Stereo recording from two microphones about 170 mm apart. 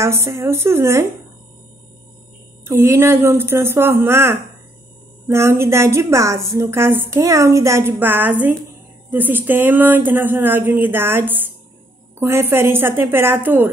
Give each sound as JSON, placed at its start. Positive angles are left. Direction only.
{"t": 0.0, "sound": "a woman's voice", "side_deg": -15}
{"t": 2.6, "sound": "a woman's voice", "side_deg": -15}